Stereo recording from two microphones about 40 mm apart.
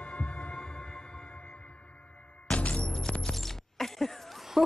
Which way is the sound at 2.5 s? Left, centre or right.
Left.